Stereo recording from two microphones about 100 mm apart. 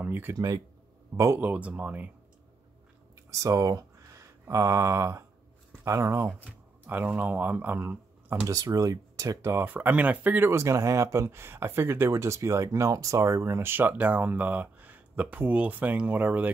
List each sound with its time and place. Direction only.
0.0 s a sound: 20° right (ahead or behind)
0.3 s speech: 35° right (ahead or behind)
1.4 s speech: 15° right (ahead or behind)
3.3 s speech: 35° right (ahead or behind); by 8.5 s 20° right (ahead or behind)
8.5 s speech: 35° right (ahead or behind)
9.7 s speech: 15° right (ahead or behind)